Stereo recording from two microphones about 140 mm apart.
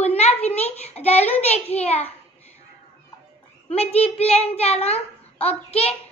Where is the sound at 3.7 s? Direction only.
45° left (ahead or behind).